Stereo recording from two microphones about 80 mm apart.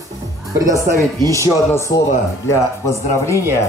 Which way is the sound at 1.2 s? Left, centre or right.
Right.